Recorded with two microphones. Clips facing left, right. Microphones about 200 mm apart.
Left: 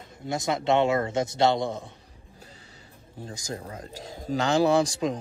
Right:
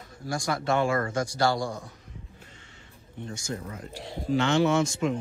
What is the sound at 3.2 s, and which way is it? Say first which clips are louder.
Speech: right 1 dB; 35° left (ahead or behind).